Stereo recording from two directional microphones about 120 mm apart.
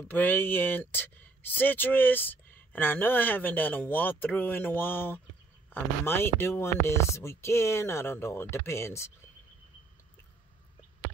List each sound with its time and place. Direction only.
0.1 s speech: 15° left (ahead or behind)